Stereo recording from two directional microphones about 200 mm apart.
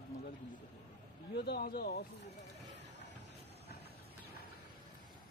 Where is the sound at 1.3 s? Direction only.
55° left (ahead or behind).